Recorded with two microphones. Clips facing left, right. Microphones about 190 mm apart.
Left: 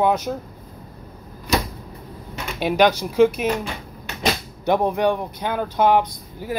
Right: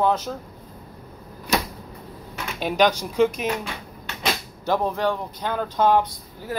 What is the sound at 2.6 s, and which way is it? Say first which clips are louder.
Speech: left 3 dB; 10° left (ahead or behind).